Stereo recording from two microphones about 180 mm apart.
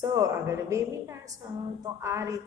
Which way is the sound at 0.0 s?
20° right (ahead or behind).